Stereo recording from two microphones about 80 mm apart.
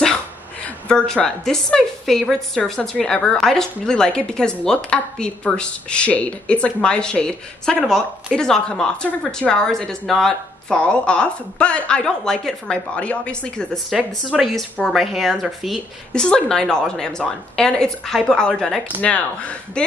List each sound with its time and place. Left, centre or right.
0.7 s a woman's voice: centre
13.9 s a woman's voice: centre
16.1 s a woman's voice: centre
18.9 s a woman's voice: centre